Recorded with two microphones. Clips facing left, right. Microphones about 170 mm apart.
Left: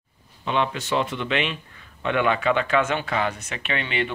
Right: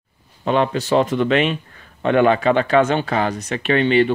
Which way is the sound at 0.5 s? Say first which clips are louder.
Right 7 dB; 40° right (ahead or behind).